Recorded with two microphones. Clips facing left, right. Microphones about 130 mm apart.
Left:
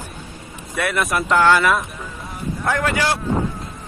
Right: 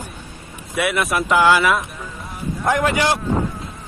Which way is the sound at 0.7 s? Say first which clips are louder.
Right 1 dB; centre (ahead or behind).